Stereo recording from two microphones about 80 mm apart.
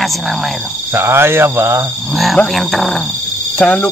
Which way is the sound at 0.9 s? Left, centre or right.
Right.